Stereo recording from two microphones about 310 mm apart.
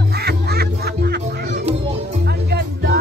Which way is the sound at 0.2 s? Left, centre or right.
Right.